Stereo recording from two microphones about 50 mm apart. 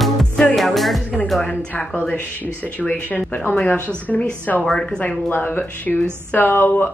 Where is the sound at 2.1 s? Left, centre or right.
Left.